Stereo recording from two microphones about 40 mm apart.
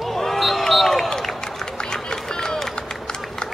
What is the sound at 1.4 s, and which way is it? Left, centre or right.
Run, centre.